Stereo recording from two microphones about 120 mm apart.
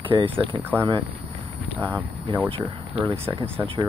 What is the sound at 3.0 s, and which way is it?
Speech, 20° right (ahead or behind).